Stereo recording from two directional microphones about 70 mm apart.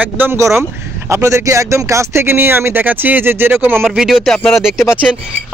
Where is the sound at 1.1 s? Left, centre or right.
Right.